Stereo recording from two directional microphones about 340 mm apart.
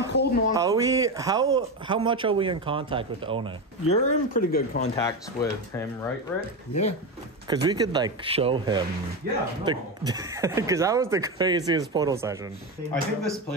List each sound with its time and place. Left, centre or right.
0.1 s speech: left
0.5 s speech: centre
3.9 s speech: left
7.6 s speech: centre
9.2 s speech: right
9.7 s speech: centre
12.9 s speech: centre